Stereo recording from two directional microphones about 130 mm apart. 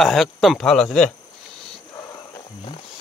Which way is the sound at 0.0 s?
Centre (ahead or behind).